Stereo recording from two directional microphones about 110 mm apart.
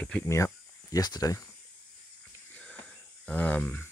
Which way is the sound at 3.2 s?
10° left (ahead or behind).